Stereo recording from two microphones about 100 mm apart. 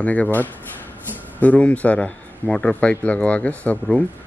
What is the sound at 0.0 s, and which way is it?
A man's voice, 15° left (ahead or behind).